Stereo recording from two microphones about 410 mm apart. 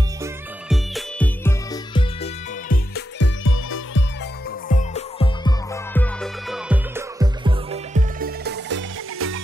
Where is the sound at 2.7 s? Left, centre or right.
Left.